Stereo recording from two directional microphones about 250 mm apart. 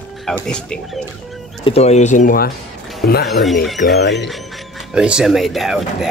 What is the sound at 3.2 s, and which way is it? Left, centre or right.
A man's voice, centre.